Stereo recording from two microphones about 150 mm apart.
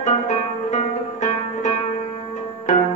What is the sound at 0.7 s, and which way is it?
Music, 50° left (ahead or behind).